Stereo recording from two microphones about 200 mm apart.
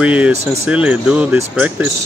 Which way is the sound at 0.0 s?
5° right (ahead or behind).